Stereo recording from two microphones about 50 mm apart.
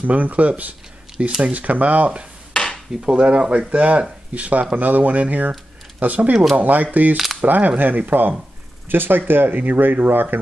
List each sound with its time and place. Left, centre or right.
0.0 s speech: right
2.5 s dishes: centre
3.1 s speech: right